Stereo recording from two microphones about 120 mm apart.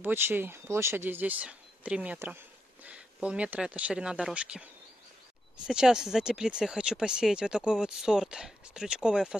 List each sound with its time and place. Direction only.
0.0 s speech: 15° right (ahead or behind)
5.7 s speech: 5° right (ahead or behind)